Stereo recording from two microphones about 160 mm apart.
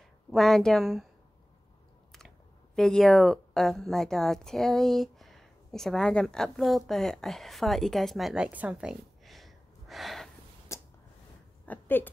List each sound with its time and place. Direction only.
0.3 s a woman's voice: centre (ahead or behind)
2.1 s speech: 5° left (ahead or behind)
10.7 s a sound: 20° left (ahead or behind)